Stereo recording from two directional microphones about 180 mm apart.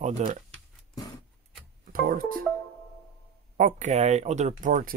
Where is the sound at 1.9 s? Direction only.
50° right (ahead or behind).